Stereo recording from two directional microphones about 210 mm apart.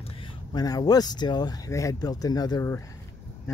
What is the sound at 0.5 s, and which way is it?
Speech, 20° left (ahead or behind).